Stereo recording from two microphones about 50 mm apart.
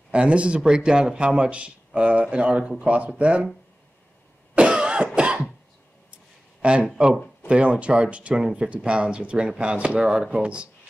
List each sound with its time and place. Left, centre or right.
0.1 s speech: right
4.6 s cough: right
6.6 s speech: right